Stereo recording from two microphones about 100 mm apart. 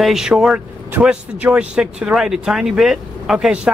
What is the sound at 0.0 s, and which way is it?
Speech, 5° right (ahead or behind).